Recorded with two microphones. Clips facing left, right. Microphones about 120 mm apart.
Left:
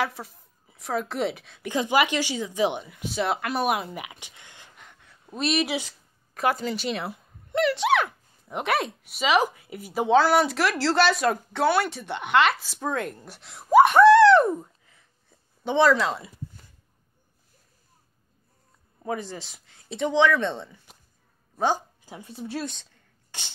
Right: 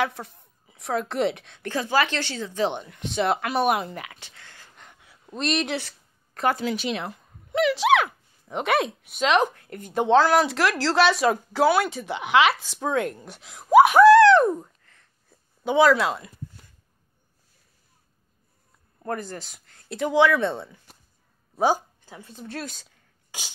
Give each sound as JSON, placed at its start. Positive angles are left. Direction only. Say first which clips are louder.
{"t": 0.0, "sound": "speech", "louder": "right 2 dB", "side_deg": 0}
{"t": 1.7, "sound": "speech", "louder": "left 1 dB", "side_deg": 15}
{"t": 3.9, "sound": "a sound", "louder": "even", "side_deg": 15}
{"t": 4.7, "sound": "a sound", "louder": "right 1 dB", "side_deg": 0}
{"t": 6.3, "sound": "speech", "louder": "right 1 dB", "side_deg": 0}
{"t": 19.0, "sound": "speech", "louder": "even", "side_deg": 0}
{"t": 20.7, "sound": "a sound", "louder": "even", "side_deg": 15}
{"t": 21.5, "sound": "speech", "louder": "right 3 dB", "side_deg": -10}
{"t": 22.0, "sound": "speech", "louder": "left 3 dB", "side_deg": 10}
{"t": 22.7, "sound": "rub", "louder": "left 1 dB", "side_deg": -5}